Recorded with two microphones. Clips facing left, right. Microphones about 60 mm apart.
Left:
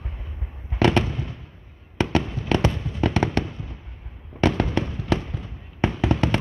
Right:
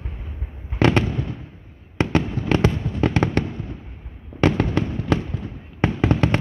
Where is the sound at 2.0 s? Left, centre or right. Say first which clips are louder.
Right 2 dB; right.